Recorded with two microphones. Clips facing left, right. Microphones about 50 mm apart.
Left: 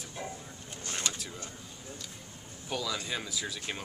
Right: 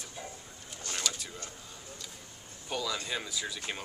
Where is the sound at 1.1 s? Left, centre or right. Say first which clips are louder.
Even; left.